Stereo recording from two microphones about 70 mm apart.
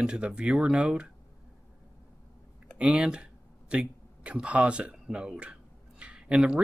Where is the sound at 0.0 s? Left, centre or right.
Centre.